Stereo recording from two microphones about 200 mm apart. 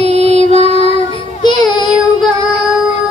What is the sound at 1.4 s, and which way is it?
Child singing, 20° left (ahead or behind).